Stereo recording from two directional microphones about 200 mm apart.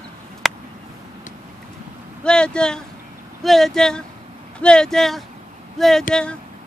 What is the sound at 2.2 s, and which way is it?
Speech, 5° left (ahead or behind).